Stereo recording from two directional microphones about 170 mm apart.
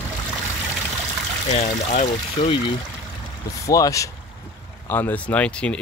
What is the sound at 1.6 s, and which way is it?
Speech, 45° left (ahead or behind).